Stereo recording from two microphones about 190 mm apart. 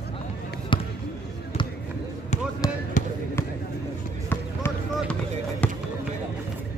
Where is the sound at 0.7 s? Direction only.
25° left (ahead or behind).